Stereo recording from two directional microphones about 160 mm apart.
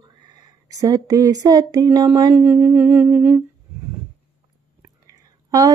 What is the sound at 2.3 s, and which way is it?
Humming, 10° right (ahead or behind).